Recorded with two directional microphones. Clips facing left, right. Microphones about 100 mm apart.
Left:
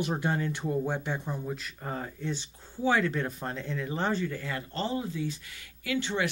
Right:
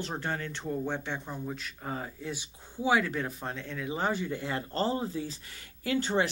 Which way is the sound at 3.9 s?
15° right (ahead or behind).